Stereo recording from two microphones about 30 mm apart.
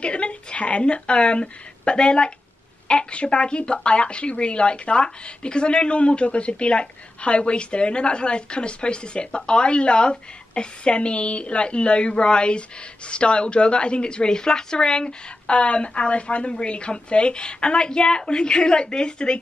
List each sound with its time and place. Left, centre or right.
0.0 s a woman's voice: left
15.4 s speech: left